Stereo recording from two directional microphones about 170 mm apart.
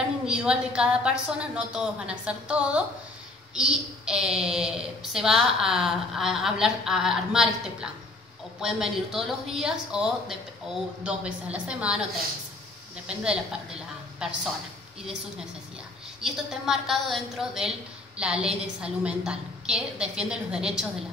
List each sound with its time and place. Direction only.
0.3 s a child's voice: 5° right (ahead or behind)
16.2 s a child's voice: centre (ahead or behind)